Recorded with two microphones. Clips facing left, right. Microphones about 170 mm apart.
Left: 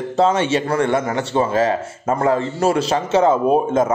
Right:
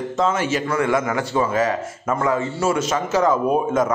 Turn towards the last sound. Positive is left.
turn(degrees=25)  # may be behind; listen again after turning